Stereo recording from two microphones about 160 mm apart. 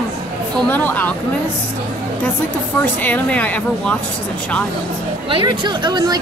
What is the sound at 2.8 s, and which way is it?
Speech, 10° left (ahead or behind).